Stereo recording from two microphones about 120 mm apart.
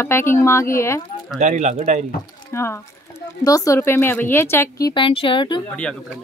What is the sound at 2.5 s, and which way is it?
Speech, 20° left (ahead or behind).